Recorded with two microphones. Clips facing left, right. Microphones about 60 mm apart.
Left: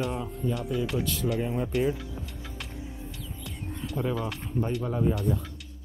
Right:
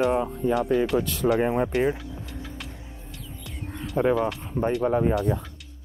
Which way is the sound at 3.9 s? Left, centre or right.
Right.